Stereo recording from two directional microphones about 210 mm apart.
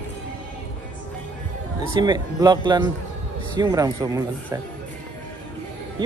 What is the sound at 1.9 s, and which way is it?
Speech, 20° right (ahead or behind).